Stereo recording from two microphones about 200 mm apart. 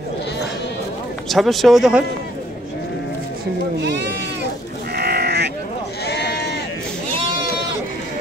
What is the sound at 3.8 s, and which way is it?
Sheep, 60° right (ahead or behind).